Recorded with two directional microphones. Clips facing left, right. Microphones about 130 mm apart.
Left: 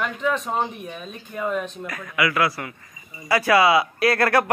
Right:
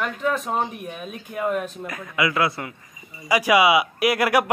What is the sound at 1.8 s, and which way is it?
A man's voice, 20° right (ahead or behind).